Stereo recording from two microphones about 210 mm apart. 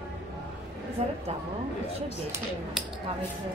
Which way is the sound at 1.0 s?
30° right (ahead or behind).